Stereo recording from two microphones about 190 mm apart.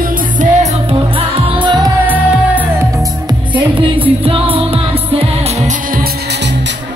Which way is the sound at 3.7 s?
25° right (ahead or behind).